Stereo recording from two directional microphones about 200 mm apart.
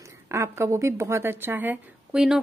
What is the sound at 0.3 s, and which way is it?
A woman's voice, 15° right (ahead or behind).